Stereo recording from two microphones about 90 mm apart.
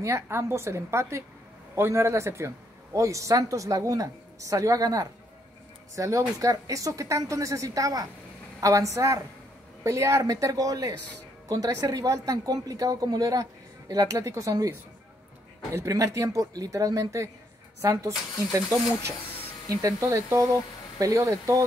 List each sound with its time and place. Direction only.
0.0 s a woman's voice: 30° right (ahead or behind)
15.7 s a woman's voice: 35° right (ahead or behind)
19.7 s a woman's voice: 35° right (ahead or behind)